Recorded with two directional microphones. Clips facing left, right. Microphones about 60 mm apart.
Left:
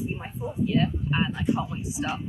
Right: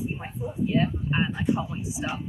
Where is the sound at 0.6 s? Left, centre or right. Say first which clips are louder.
Even; right.